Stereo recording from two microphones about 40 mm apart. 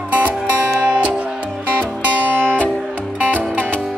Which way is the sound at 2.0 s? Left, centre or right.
Right.